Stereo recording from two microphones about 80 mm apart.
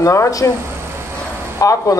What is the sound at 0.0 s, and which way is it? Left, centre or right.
Speech, left.